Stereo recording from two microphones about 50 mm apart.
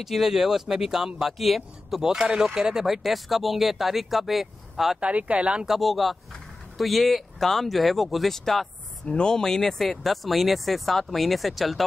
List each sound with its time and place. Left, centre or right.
0.0 s speech: centre
5.0 s speech: right
5.7 s speech: centre
9.0 s speech: centre